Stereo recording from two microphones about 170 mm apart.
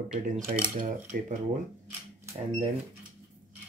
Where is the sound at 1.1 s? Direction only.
55° right (ahead or behind).